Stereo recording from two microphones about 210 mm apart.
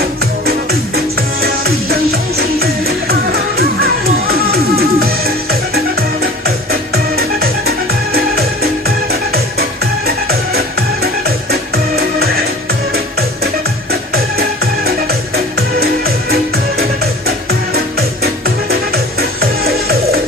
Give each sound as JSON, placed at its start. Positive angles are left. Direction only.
{"t": 0.5, "sound": "music", "side_deg": -45}
{"t": 15.8, "sound": "music", "side_deg": -45}